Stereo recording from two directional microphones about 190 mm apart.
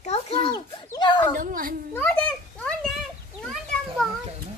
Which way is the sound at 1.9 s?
10° left (ahead or behind).